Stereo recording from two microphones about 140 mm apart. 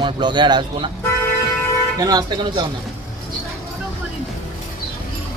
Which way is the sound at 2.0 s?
30° right (ahead or behind).